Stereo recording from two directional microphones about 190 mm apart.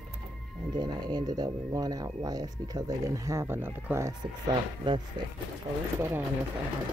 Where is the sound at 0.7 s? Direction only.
20° right (ahead or behind).